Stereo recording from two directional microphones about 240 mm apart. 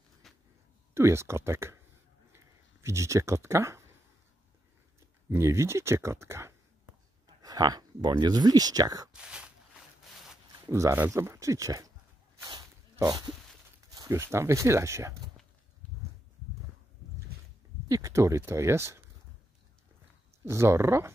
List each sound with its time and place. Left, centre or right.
0.2 s a sound: centre
0.9 s speech: centre
5.3 s speech: centre
9.1 s a sound: centre
10.3 s speech: centre
12.4 s dog: centre
13.8 s a sound: centre
14.3 s speech: centre
17.8 s speech: centre
20.4 s speech: centre